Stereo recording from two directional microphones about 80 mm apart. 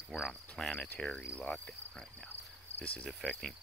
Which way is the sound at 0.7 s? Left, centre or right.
Centre.